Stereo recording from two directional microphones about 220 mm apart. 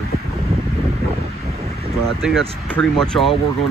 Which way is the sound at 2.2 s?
Centre (ahead or behind).